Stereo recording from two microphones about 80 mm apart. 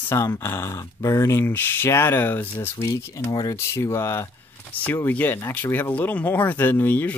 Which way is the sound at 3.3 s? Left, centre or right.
Left.